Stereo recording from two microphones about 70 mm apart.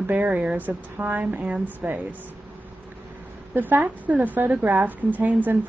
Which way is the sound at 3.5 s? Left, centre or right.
Right.